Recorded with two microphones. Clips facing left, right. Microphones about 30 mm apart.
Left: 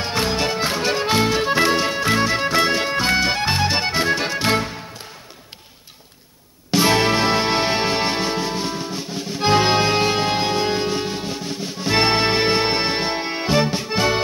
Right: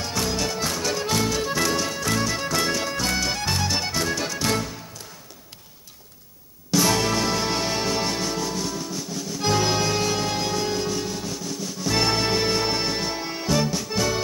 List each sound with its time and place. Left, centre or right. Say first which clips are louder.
0.0 s music: left 5 dB; left
6.7 s music: left 4 dB; left